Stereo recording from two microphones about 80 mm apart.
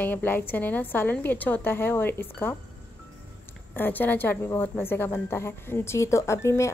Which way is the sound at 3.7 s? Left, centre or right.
Left.